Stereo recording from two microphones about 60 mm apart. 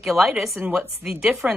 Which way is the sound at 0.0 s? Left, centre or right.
Centre.